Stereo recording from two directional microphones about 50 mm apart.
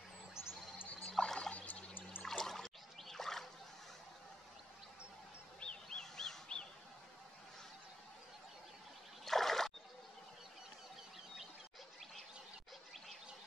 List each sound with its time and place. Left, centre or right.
0.4 s music: left
1.2 s a sound: centre
1.5 s turkey: left
2.2 s trickle: centre
5.6 s a sound: centre
9.2 s trickle: centre